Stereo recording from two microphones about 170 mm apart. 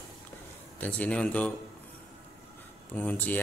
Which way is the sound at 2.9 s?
10° left (ahead or behind).